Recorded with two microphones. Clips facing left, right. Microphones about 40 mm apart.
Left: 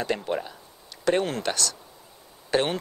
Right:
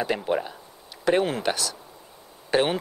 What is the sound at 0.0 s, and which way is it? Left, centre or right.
Speech, centre.